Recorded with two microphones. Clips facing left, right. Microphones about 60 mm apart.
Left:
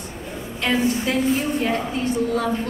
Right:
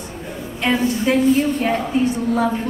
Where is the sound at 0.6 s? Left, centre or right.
Centre.